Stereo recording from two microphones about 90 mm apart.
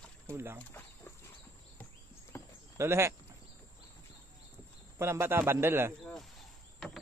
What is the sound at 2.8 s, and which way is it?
Speech, 30° right (ahead or behind).